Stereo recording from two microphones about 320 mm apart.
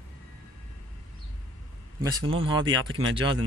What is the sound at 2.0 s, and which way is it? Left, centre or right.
Speech, centre.